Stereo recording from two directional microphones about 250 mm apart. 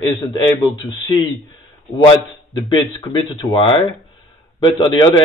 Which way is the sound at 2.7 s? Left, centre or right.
Centre.